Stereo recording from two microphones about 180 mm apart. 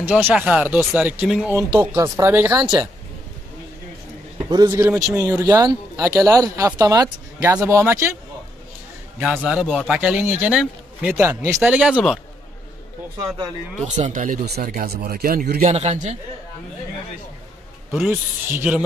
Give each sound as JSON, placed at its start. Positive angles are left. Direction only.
{"t": 0.0, "sound": "speech", "side_deg": -5}
{"t": 2.6, "sound": "speech", "side_deg": -25}
{"t": 4.5, "sound": "speech", "side_deg": -20}
{"t": 9.2, "sound": "a man's voice", "side_deg": -5}
{"t": 13.8, "sound": "speech", "side_deg": -40}
{"t": 15.6, "sound": "a man's voice", "side_deg": -35}
{"t": 17.9, "sound": "speech", "side_deg": -10}